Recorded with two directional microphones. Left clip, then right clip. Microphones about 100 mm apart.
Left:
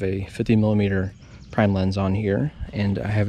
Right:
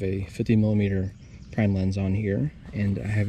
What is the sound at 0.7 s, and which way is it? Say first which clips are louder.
Speech: left 4 dB; 30° right (ahead or behind).